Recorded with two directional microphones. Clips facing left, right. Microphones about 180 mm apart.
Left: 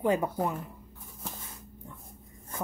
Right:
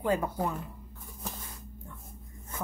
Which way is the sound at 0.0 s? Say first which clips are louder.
Left 2 dB; 20° left (ahead or behind).